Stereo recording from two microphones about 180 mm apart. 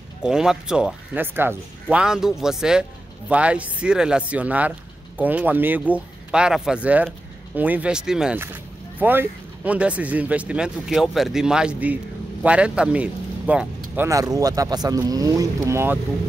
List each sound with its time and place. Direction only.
0.2 s speech: 5° right (ahead or behind)